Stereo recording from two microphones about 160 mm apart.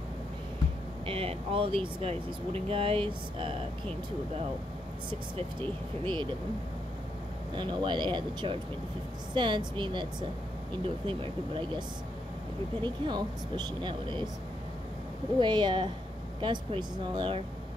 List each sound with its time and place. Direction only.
1.0 s speech: 35° right (ahead or behind)
5.6 s speech: 30° right (ahead or behind)
7.5 s speech: 30° right (ahead or behind)
11.1 s speech: 30° right (ahead or behind)
12.8 s speech: 30° right (ahead or behind)
15.3 s speech: 30° right (ahead or behind)